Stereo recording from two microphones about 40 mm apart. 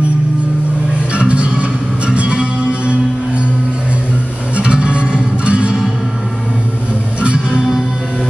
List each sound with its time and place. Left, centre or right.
1.1 s music: right
4.6 s music: right
7.2 s music: right